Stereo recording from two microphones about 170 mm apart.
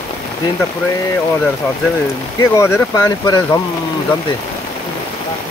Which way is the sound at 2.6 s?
15° left (ahead or behind).